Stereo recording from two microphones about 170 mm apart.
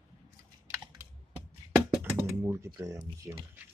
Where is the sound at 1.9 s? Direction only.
10° right (ahead or behind).